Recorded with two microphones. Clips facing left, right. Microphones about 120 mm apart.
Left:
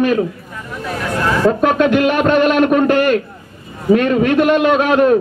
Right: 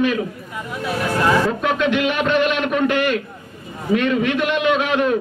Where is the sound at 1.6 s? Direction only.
45° left (ahead or behind).